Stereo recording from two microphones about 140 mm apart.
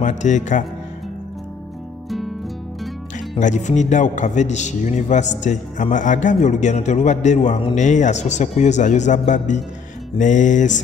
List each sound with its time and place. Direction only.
0.0 s a man's voice: 60° left (ahead or behind)
2.0 s music: centre (ahead or behind)
3.3 s a man's voice: 60° left (ahead or behind)